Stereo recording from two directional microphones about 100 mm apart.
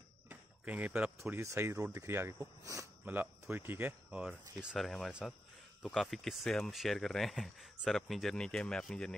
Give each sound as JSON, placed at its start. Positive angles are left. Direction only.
{"t": 0.3, "sound": "a sound", "side_deg": -15}
{"t": 1.1, "sound": "speech", "side_deg": -30}
{"t": 2.0, "sound": "speech", "side_deg": -25}
{"t": 3.1, "sound": "speech", "side_deg": -20}
{"t": 4.3, "sound": "speech", "side_deg": -5}